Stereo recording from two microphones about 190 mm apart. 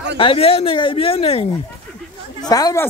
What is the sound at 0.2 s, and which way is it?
Speech, 30° left (ahead or behind).